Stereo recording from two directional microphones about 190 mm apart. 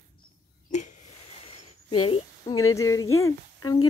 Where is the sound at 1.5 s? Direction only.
30° left (ahead or behind).